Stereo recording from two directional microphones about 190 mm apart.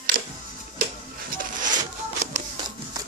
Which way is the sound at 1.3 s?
45° right (ahead or behind).